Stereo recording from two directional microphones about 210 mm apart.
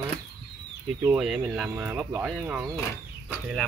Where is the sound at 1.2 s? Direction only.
Centre (ahead or behind).